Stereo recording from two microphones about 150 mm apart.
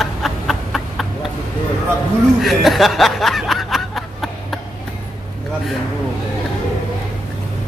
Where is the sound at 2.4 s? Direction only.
Centre (ahead or behind).